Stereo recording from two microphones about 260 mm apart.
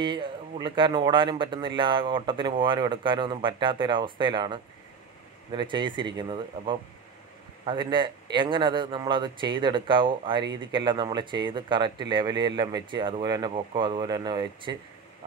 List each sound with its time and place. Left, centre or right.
0.0 s speech: centre